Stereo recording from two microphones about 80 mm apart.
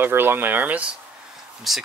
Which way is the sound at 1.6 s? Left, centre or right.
Centre.